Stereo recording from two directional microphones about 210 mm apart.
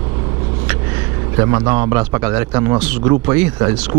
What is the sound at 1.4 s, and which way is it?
A man's voice, 15° right (ahead or behind).